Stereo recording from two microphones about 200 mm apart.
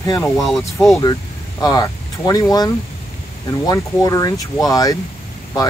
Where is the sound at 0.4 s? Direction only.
Centre (ahead or behind).